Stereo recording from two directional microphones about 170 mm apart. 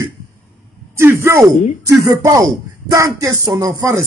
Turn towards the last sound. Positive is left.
turn(degrees=-20)  # may be behind; listen again after turning